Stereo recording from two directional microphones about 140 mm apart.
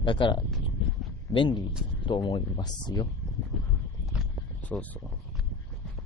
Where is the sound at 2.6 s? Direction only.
30° left (ahead or behind).